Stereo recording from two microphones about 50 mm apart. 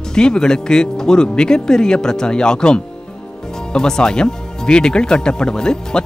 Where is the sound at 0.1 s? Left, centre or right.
Centre.